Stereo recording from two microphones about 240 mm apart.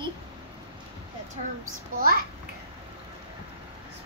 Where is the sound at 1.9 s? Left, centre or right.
Right.